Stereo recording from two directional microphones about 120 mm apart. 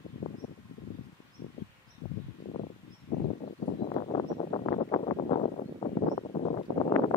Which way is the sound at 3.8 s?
50° left (ahead or behind).